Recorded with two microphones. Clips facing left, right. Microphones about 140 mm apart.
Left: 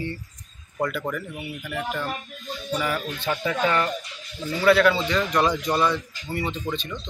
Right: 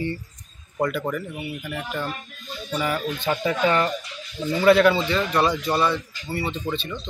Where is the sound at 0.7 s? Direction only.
10° right (ahead or behind).